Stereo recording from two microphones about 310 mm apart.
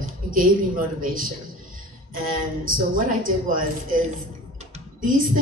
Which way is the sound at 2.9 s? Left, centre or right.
Right.